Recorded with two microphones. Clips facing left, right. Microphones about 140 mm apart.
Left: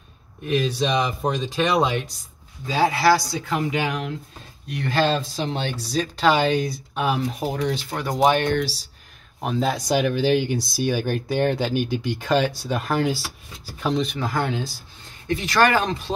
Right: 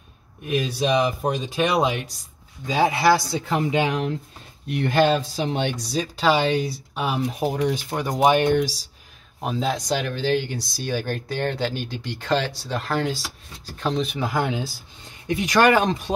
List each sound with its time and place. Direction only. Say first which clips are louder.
0.5 s speech: even; 10° right (ahead or behind)
5.0 s speech: right 1 dB; 10° right (ahead or behind)
9.4 s speech: left 1 dB; centre (ahead or behind)
9.8 s speech: left 4 dB; 10° left (ahead or behind); by 16.0 s 20° right (ahead or behind)